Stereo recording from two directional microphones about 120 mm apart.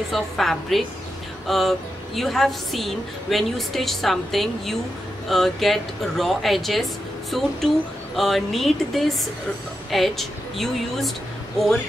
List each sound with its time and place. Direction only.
0.1 s a woman's voice: centre (ahead or behind)